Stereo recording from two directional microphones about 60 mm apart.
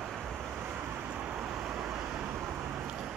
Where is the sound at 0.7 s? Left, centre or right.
Right.